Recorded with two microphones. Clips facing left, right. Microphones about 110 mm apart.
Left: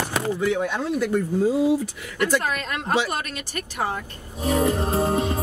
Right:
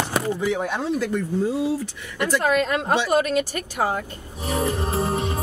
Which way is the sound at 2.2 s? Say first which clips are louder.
Right 3 dB; 25° right (ahead or behind).